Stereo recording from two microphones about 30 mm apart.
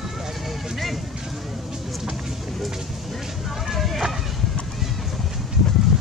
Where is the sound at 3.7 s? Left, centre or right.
Centre.